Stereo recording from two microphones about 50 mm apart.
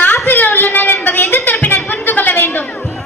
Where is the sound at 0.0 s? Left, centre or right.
Left.